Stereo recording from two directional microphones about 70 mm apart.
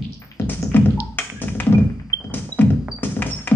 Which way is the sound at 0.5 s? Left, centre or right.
Left.